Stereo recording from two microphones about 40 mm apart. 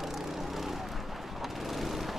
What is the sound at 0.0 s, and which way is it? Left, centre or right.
Vehicle, centre.